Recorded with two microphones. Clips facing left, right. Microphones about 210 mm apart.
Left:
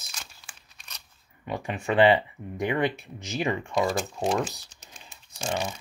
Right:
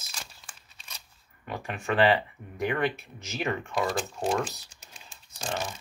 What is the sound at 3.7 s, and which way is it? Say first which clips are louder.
Speech: left 3 dB; centre (ahead or behind).